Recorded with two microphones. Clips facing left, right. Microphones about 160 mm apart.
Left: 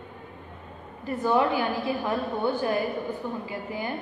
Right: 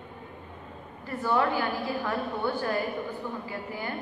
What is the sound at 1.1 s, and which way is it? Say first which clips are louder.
A woman's voice: left 3 dB; 20° left (ahead or behind).